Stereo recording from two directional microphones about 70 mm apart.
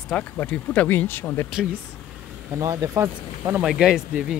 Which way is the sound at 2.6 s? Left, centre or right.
Right.